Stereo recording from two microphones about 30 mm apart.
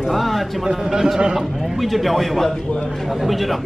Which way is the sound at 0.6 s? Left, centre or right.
Right.